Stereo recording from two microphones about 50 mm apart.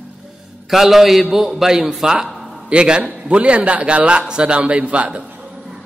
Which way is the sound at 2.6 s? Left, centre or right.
Centre.